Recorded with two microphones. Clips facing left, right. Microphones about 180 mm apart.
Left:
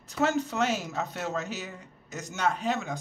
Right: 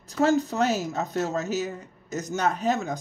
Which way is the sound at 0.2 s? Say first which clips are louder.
Right 5 dB; 40° right (ahead or behind).